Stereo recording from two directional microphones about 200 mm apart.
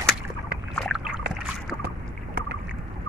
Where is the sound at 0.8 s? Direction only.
Centre (ahead or behind).